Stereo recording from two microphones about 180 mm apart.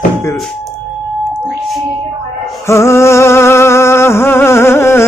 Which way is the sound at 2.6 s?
15° left (ahead or behind).